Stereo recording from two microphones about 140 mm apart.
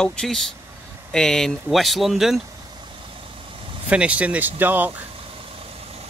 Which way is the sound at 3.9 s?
10° right (ahead or behind).